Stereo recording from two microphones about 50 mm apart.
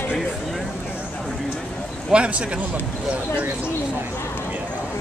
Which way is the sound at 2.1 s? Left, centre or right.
Right.